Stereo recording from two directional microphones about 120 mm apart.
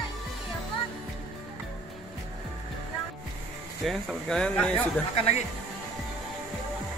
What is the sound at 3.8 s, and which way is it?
Speech, 5° left (ahead or behind).